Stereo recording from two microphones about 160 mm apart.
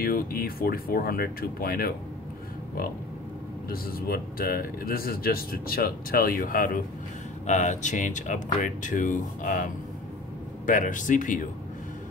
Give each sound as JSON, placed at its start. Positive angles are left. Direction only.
{"t": 0.0, "sound": "speech", "side_deg": 70}
{"t": 3.7, "sound": "speech", "side_deg": 70}
{"t": 7.4, "sound": "speech", "side_deg": 50}
{"t": 10.7, "sound": "speech", "side_deg": 55}